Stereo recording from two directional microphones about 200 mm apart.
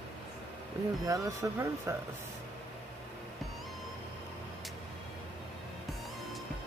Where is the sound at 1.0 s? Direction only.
15° right (ahead or behind).